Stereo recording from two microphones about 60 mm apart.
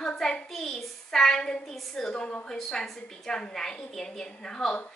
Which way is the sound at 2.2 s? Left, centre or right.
Left.